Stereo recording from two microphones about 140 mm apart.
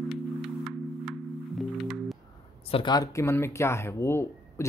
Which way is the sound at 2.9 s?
25° left (ahead or behind).